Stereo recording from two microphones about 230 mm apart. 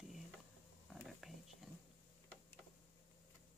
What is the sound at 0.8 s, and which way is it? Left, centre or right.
Whispering, centre.